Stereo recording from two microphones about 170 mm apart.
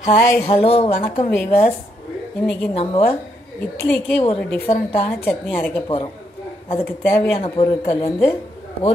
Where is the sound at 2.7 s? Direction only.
35° left (ahead or behind).